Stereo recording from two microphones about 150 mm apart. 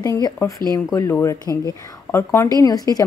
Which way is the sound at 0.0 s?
20° left (ahead or behind).